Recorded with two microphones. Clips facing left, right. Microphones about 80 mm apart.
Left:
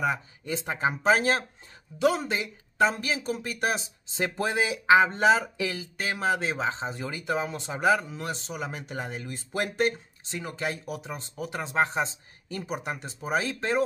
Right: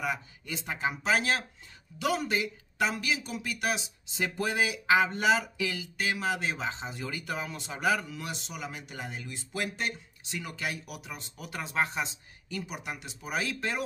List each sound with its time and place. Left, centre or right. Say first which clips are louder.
0.0 s speech: left 5 dB; left